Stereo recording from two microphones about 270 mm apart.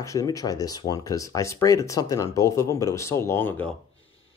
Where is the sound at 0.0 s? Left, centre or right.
Centre.